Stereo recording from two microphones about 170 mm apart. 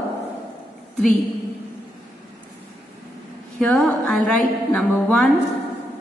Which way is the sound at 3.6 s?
5° left (ahead or behind).